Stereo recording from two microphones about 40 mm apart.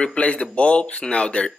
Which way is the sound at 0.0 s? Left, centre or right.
Left.